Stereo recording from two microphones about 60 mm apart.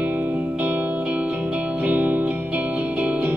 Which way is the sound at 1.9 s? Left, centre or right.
Right.